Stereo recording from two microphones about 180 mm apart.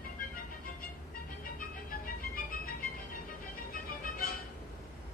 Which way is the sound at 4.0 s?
55° left (ahead or behind).